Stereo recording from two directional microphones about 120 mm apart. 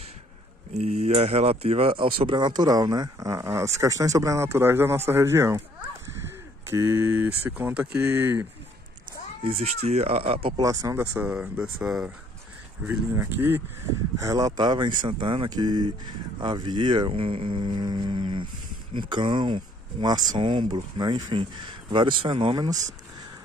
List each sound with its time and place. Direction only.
0.7 s speech: 65° right (ahead or behind); by 5.6 s 25° right (ahead or behind)
6.7 s speech: 20° right (ahead or behind)
9.4 s speech: 55° right (ahead or behind)
10.6 s speech: 30° right (ahead or behind)
11.1 s speech: 10° right (ahead or behind)
12.8 s speech: 20° right (ahead or behind)
14.1 s speech: 30° right (ahead or behind); by 22.7 s 45° right (ahead or behind)